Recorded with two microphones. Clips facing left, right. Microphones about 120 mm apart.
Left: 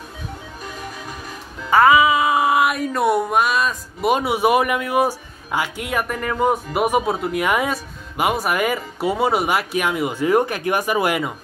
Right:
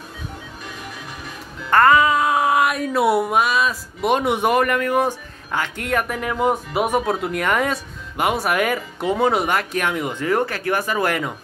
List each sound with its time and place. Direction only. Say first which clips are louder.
1.7 s speech: left 1 dB; 5° left (ahead or behind)